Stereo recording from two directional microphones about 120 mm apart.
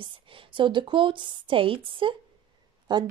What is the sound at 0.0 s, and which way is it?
A woman's voice, 45° right (ahead or behind).